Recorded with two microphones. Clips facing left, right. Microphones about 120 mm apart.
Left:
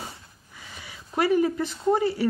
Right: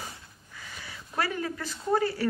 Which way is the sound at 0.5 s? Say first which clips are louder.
Even; 15° left (ahead or behind).